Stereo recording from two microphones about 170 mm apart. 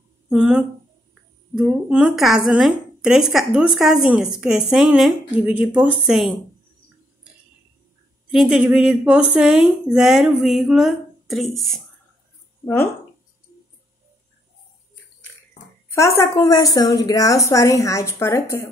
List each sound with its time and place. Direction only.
0.3 s a woman's voice: 5° right (ahead or behind)
8.3 s a woman's voice: 5° right (ahead or behind)
15.9 s a woman's voice: 15° left (ahead or behind)